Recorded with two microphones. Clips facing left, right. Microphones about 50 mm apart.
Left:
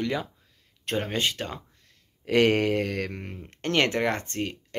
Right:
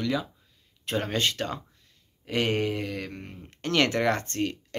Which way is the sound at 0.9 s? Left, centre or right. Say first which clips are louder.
Even; centre.